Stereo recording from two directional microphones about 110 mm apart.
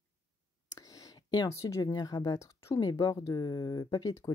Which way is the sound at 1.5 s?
30° left (ahead or behind).